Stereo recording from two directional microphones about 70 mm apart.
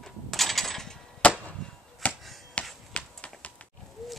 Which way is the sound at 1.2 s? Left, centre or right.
Centre.